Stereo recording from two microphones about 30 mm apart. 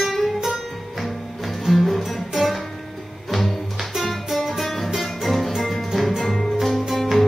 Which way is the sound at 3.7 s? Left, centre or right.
Centre.